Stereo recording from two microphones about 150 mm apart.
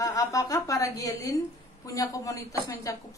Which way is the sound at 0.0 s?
20° left (ahead or behind).